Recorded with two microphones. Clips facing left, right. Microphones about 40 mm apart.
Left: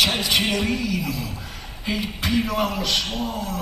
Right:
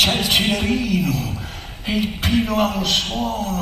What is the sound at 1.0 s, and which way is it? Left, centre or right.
Speech, right.